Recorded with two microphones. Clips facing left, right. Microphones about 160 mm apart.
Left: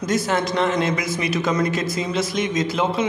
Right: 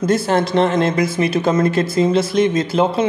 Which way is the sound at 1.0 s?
30° right (ahead or behind).